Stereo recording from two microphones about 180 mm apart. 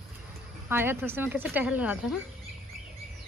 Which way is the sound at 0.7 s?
10° right (ahead or behind).